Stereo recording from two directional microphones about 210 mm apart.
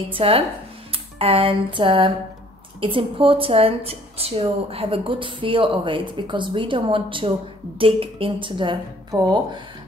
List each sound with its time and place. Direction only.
0.1 s a woman's voice: 25° right (ahead or behind)